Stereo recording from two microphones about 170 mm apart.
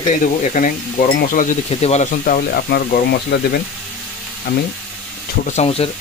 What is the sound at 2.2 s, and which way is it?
Speech, 60° left (ahead or behind).